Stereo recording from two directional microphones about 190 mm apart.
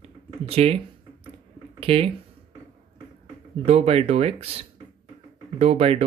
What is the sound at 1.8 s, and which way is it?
Speech, 30° right (ahead or behind).